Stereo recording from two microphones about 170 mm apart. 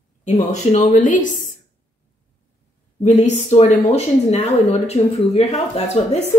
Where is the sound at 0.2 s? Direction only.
45° left (ahead or behind).